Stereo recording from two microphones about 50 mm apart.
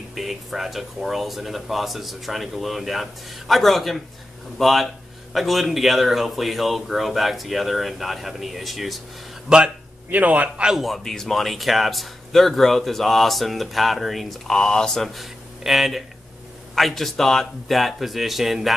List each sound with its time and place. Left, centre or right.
0.1 s speech: centre
9.5 s a man's voice: centre
10.1 s a man's voice: right
10.8 s speech: centre
15.6 s speech: centre